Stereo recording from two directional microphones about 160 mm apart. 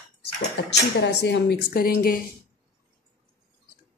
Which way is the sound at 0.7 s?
90° left.